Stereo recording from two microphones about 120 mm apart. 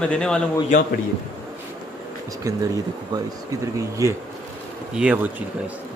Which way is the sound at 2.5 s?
30° right (ahead or behind).